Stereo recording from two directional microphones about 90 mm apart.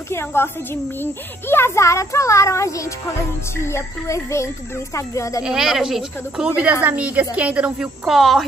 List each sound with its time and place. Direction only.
0.1 s a woman's voice: 25° left (ahead or behind)
5.4 s speech: 5° right (ahead or behind)
8.1 s speech: centre (ahead or behind)